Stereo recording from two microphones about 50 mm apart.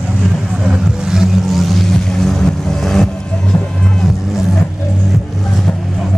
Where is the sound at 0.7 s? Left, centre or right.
Centre.